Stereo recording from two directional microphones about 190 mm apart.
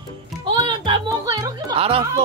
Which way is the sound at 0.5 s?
25° right (ahead or behind).